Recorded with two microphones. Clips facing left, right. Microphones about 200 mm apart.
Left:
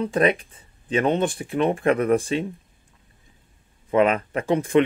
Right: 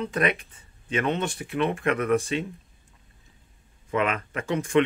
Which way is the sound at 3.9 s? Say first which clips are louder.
Left 7 dB; 30° left (ahead or behind).